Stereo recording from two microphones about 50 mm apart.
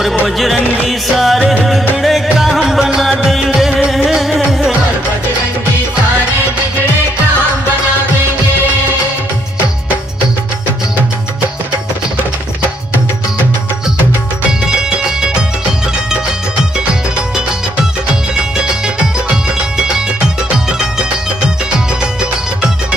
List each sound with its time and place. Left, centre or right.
0.4 s music: centre